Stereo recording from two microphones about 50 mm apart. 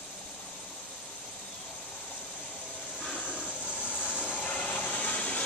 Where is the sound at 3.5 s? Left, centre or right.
Left.